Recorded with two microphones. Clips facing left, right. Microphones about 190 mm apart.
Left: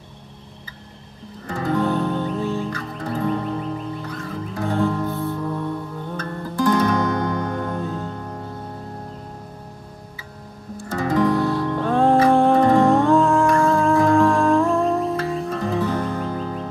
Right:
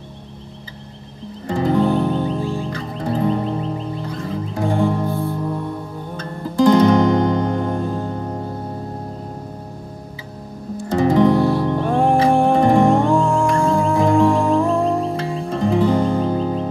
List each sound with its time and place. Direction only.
1.5 s music: 25° right (ahead or behind)
2.7 s music: 25° right (ahead or behind)
10.9 s music: 25° right (ahead or behind)
15.4 s music: 30° right (ahead or behind)